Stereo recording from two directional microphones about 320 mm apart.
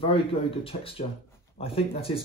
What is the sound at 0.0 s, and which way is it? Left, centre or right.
Speech, centre.